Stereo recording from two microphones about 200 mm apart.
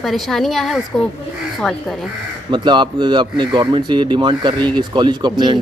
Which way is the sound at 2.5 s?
25° right (ahead or behind).